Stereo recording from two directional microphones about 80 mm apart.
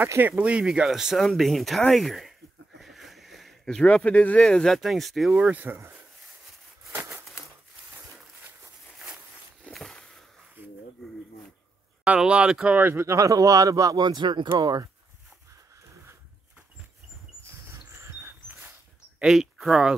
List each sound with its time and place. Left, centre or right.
0.0 s speech: right
0.4 s speech: centre
2.8 s a sound: centre
3.8 s speech: centre
5.4 s speech: centre
9.7 s a sound: centre
12.0 s speech: centre
12.7 s speech: right
14.0 s speech: right
19.1 s speech: centre